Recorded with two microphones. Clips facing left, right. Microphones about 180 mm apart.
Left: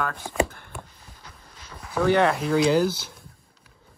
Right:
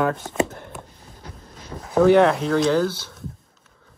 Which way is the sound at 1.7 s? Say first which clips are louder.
Right 8 dB; 30° right (ahead or behind).